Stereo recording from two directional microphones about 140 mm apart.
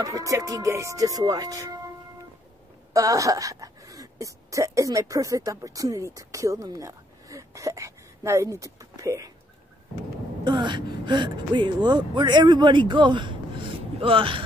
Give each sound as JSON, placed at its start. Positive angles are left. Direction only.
{"t": 0.0, "sound": "speech", "side_deg": -25}
{"t": 2.9, "sound": "speech", "side_deg": -25}
{"t": 10.4, "sound": "speech", "side_deg": -35}